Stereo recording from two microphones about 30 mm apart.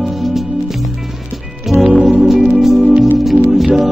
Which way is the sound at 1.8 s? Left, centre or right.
Right.